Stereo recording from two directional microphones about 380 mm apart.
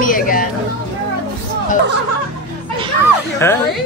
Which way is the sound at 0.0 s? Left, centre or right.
Left.